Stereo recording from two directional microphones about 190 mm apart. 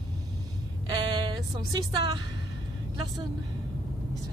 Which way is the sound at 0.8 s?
25° right (ahead or behind).